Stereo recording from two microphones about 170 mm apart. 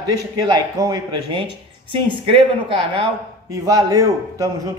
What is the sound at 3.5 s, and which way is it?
Speech, 20° right (ahead or behind).